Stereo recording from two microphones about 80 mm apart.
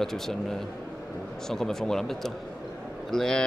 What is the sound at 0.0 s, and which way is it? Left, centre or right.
Speech, centre.